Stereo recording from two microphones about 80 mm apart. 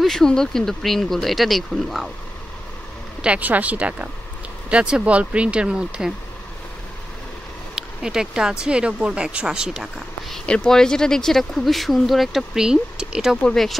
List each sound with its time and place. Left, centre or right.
0.0 s speech: centre
3.2 s speech: centre
7.7 s speech: centre
10.4 s speech: centre
13.4 s speech: centre